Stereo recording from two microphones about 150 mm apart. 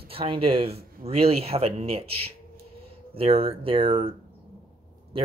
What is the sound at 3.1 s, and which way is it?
Speech, 40° right (ahead or behind).